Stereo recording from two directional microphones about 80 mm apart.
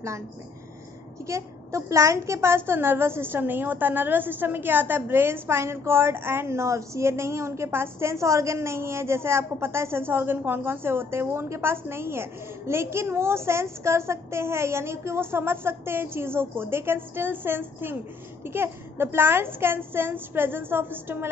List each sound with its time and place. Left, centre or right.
1.2 s a woman's voice: right